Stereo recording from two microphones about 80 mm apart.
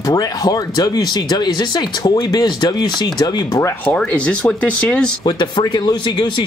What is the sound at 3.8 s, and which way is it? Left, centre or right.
Speech, centre.